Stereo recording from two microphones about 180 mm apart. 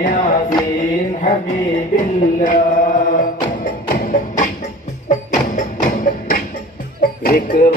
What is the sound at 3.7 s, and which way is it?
Music, 45° left (ahead or behind).